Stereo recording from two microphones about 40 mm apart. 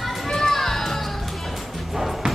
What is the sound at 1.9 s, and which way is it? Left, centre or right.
Music, centre.